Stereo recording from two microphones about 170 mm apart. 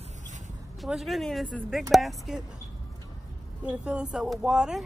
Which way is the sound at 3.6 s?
5° right (ahead or behind).